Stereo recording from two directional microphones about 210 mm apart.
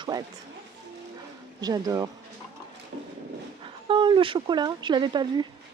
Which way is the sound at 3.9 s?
25° right (ahead or behind).